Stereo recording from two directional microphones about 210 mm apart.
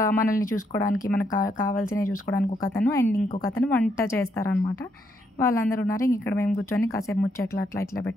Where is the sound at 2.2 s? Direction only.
15° left (ahead or behind).